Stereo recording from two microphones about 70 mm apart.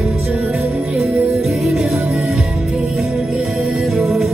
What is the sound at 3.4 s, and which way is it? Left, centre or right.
Music, centre.